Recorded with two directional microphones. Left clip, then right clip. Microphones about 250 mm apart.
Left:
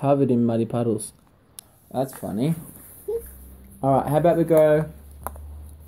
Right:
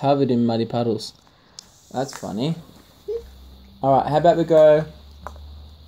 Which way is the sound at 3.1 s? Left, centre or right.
Left.